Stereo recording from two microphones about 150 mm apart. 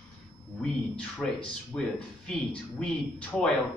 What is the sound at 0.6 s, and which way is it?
Speech, 5° left (ahead or behind).